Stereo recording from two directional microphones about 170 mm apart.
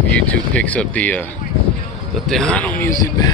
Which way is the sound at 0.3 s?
10° left (ahead or behind).